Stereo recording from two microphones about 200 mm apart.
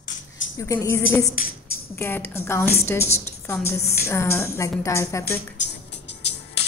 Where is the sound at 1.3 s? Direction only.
45° left (ahead or behind).